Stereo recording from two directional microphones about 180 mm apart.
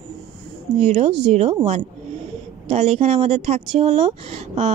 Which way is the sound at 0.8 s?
40° right (ahead or behind).